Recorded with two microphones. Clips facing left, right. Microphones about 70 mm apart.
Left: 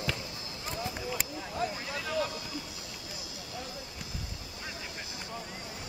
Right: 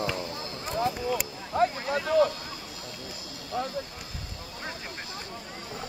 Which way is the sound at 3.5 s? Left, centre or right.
Right.